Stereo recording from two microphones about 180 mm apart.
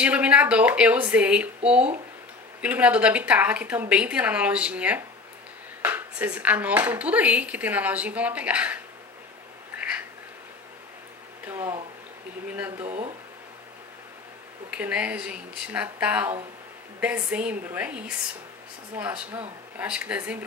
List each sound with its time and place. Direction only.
0.0 s speech: 5° right (ahead or behind)
9.8 s a sound: 5° right (ahead or behind)
11.4 s speech: 15° right (ahead or behind)
12.8 s speech: 35° right (ahead or behind)
14.7 s speech: 5° right (ahead or behind)